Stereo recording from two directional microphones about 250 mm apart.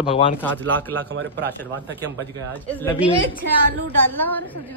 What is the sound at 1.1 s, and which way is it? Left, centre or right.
Speech, right.